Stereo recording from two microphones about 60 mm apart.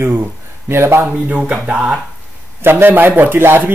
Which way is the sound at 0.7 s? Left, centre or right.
Right.